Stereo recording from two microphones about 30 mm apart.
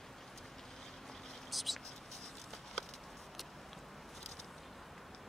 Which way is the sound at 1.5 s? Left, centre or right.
Centre.